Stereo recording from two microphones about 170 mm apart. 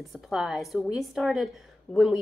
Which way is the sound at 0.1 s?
Centre (ahead or behind).